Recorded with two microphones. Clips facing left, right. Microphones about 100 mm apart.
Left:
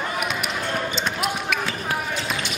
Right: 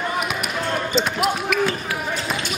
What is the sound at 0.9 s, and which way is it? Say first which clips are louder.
Basketball bounce: right 5 dB; centre (ahead or behind).